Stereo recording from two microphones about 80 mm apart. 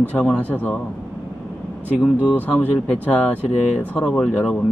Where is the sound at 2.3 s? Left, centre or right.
Left.